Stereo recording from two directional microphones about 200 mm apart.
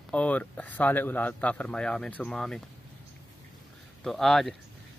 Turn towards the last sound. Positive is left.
turn(degrees=0)  # may be behind; listen again after turning